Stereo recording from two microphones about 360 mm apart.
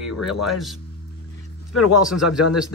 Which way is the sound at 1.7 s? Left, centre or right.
Left.